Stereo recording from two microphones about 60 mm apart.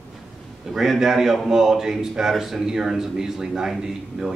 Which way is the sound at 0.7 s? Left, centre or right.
Centre.